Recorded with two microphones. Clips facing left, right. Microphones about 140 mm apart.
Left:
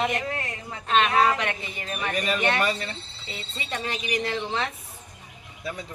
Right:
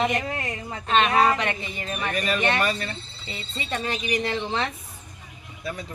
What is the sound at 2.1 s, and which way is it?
Speech, 15° left (ahead or behind).